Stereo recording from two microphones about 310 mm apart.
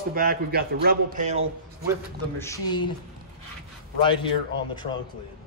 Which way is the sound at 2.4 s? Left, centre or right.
Centre.